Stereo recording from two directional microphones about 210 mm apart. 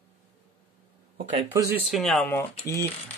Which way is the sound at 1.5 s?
15° right (ahead or behind).